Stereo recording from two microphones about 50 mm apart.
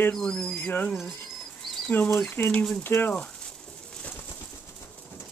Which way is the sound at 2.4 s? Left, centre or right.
Left.